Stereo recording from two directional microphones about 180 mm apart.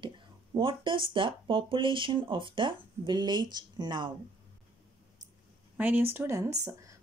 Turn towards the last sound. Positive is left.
turn(degrees=-20)  # may be behind; listen again after turning